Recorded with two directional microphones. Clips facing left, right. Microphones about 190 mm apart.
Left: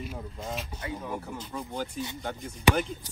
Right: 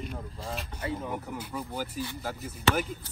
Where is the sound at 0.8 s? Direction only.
25° right (ahead or behind).